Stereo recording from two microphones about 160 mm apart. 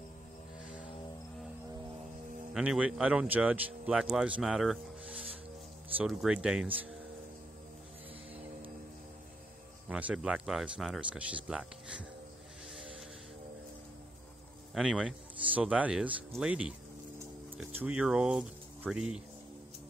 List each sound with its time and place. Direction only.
2.5 s speech: 5° right (ahead or behind)
9.8 s speech: 10° right (ahead or behind)
14.7 s speech: 5° right (ahead or behind)